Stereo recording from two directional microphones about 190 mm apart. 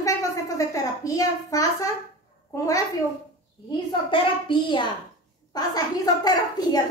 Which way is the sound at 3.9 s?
25° left (ahead or behind).